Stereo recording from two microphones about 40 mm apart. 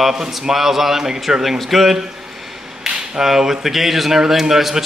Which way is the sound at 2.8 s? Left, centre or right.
Centre.